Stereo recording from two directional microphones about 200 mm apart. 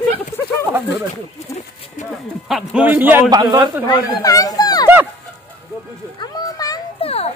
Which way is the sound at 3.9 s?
20° left (ahead or behind).